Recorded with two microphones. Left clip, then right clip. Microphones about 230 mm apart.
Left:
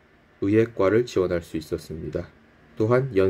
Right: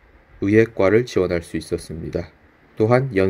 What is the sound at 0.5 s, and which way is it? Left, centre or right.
Speech, right.